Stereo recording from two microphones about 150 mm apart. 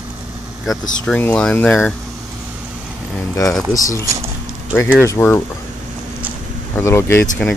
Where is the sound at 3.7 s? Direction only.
25° left (ahead or behind).